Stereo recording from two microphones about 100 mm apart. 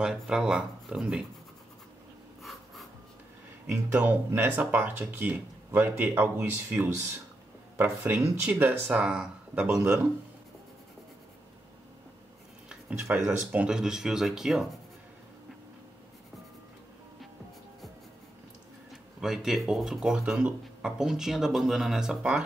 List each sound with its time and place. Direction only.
0.0 s speech: 10° right (ahead or behind)
3.6 s speech: 15° right (ahead or behind)
13.1 s speech: 10° right (ahead or behind)
19.2 s speech: 5° right (ahead or behind)